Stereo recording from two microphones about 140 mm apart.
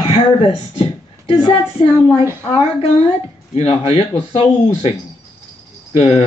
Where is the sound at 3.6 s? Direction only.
40° left (ahead or behind).